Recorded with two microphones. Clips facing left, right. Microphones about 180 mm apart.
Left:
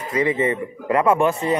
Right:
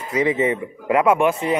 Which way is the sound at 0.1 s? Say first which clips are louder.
Right 1 dB; 15° right (ahead or behind).